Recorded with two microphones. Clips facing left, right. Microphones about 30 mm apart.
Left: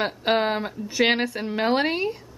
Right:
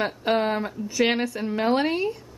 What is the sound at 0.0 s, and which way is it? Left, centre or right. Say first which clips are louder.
A woman's voice: left 1 dB; left.